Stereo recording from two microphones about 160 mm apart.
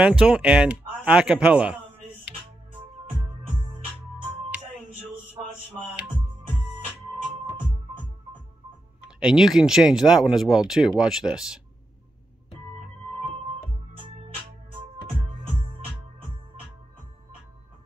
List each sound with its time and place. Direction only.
0.0 s speech: 5° right (ahead or behind)
9.0 s speech: 5° right (ahead or behind)
14.3 s music: 35° right (ahead or behind)